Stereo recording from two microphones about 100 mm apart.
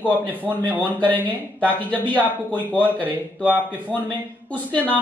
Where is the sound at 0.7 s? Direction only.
15° left (ahead or behind).